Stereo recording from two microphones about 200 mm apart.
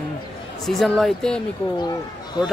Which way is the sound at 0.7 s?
Centre (ahead or behind).